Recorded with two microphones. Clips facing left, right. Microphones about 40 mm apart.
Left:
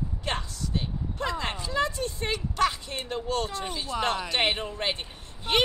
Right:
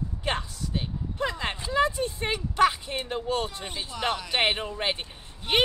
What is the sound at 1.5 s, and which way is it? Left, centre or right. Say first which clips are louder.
Speech: right 3 dB; right.